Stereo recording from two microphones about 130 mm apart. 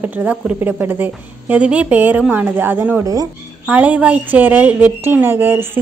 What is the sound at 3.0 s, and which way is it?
Speech, 25° right (ahead or behind).